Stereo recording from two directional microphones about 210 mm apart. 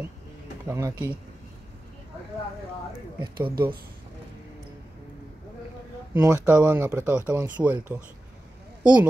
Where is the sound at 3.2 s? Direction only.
20° right (ahead or behind).